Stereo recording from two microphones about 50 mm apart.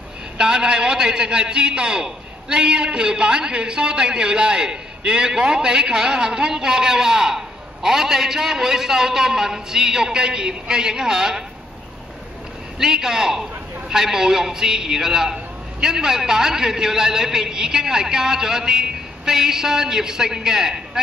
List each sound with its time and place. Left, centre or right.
0.4 s a man's voice: centre
12.7 s a man's voice: centre